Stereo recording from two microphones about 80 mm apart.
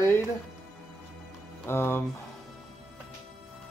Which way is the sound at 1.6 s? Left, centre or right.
Left.